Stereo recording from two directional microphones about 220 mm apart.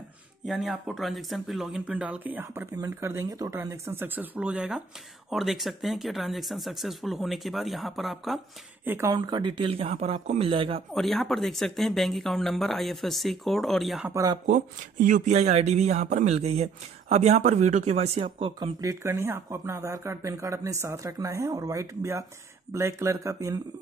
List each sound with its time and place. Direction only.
0.5 s speech: centre (ahead or behind)
8.8 s speech: 10° right (ahead or behind)
10.9 s speech: centre (ahead or behind)
14.1 s speech: 15° right (ahead or behind)
14.4 s speech: 35° right (ahead or behind); by 23.6 s 15° right (ahead or behind)